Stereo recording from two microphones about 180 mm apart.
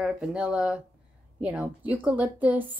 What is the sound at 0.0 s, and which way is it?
Speech, 5° right (ahead or behind).